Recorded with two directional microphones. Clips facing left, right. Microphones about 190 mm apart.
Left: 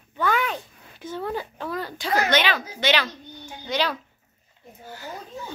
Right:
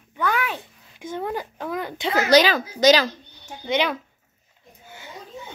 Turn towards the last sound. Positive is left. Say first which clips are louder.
# right 3 dB
turn(degrees=-20)  # may be behind; listen again after turning